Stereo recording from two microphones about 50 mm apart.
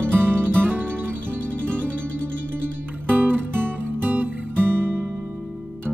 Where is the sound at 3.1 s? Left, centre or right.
Right.